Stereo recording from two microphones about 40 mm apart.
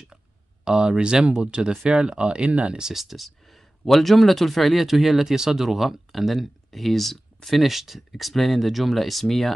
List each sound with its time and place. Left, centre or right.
0.7 s speech: centre
2.8 s speech: centre